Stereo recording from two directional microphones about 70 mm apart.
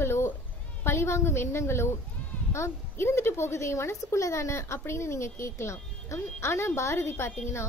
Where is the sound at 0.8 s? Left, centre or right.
Left.